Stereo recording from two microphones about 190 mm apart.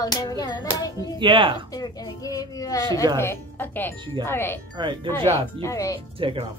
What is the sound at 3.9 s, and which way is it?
Speech, 25° right (ahead or behind).